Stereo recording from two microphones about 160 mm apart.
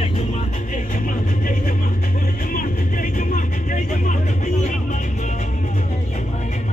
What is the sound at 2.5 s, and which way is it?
Vehicle, 60° left (ahead or behind).